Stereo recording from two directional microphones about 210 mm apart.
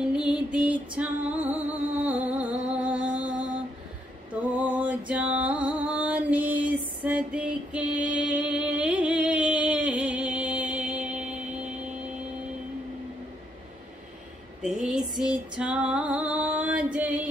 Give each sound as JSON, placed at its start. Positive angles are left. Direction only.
{"t": 0.3, "sound": "music", "side_deg": -5}
{"t": 4.7, "sound": "music", "side_deg": -5}
{"t": 14.6, "sound": "music", "side_deg": -5}